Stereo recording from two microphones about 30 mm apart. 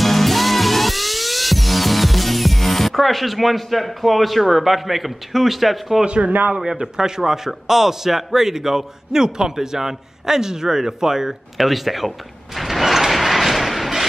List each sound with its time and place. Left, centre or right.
0.0 s music: centre
6.2 s a man's voice: right
6.6 s a man's voice: centre
11.5 s speech: centre
12.5 s a sound: centre